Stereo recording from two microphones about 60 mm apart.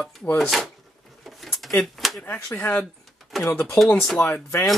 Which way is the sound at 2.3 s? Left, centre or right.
Left.